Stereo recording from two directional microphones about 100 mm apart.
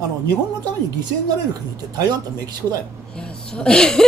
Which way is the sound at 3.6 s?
10° left (ahead or behind).